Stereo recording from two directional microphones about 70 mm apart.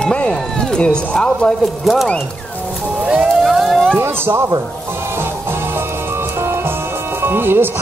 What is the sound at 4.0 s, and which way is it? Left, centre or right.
Speech, right.